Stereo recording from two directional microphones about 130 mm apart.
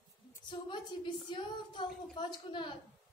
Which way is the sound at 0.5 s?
40° left (ahead or behind).